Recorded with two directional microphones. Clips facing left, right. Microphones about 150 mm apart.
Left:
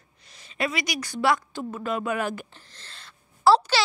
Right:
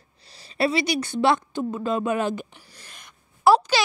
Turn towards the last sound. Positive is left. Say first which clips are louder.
# right 1 dB
turn(degrees=-15)  # may be behind; listen again after turning